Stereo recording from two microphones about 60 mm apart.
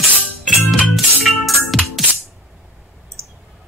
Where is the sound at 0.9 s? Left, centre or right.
Centre.